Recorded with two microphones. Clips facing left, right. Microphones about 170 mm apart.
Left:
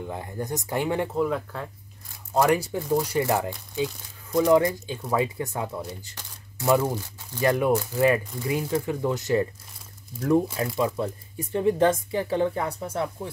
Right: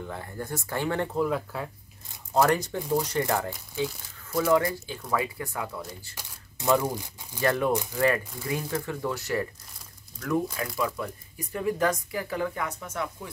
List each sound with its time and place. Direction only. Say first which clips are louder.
0.0 s speech: left 3 dB; 15° left (ahead or behind)
1.1 s speech: left 1 dB; centre (ahead or behind)
2.3 s speech: left 2 dB; 10° left (ahead or behind)
6.7 s speech: left 2 dB; 15° left (ahead or behind)
7.0 s speech: left 3 dB; 15° right (ahead or behind)
7.3 s speech: left 3 dB; 15° left (ahead or behind); by 13.3 s 30° left (ahead or behind)